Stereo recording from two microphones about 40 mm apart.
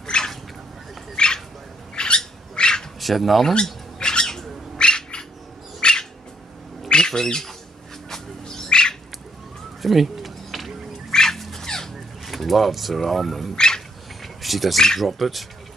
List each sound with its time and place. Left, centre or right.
0.0 s a sound: left
2.0 s bird: left
3.0 s speech: centre
4.0 s bird: centre
5.8 s cat: left
6.9 s bird: centre
9.8 s a sound: centre
11.1 s bird: centre
11.6 s a sound: centre
12.3 s speech: centre
13.6 s a sound: centre
14.2 s cricket: centre
15.0 s speech: centre